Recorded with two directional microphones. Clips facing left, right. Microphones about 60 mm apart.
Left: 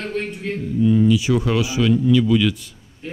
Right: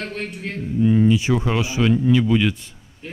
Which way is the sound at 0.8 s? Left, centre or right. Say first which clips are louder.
Even; right.